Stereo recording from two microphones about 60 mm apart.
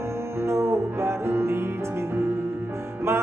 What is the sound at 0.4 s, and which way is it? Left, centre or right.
Music, right.